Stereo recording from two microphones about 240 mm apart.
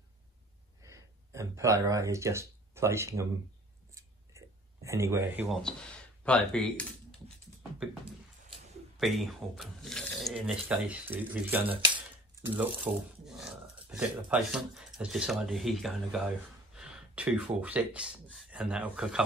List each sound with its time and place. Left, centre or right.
0.8 s speech: centre
4.3 s a sound: centre
4.8 s speech: centre
8.9 s speech: centre
11.6 s a sound: right
12.5 s speech: centre